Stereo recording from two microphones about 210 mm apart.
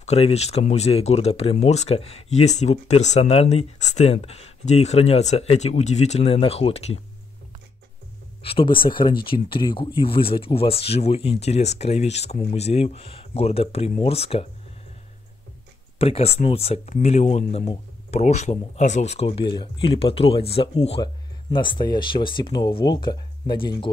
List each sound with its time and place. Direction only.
0.0 s speech: 30° left (ahead or behind)
8.4 s speech: 25° left (ahead or behind)
16.0 s speech: 30° left (ahead or behind)